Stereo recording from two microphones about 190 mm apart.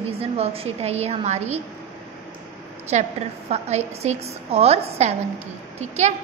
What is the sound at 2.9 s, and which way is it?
A woman's voice, 35° right (ahead or behind).